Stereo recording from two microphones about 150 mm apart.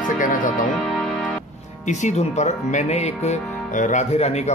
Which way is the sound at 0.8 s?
5° left (ahead or behind).